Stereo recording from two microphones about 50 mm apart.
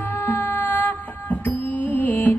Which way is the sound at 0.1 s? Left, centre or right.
Left.